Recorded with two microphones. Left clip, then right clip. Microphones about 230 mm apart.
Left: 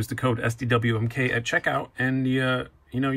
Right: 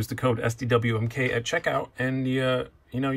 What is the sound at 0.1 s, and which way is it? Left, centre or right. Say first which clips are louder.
Speech: even; centre.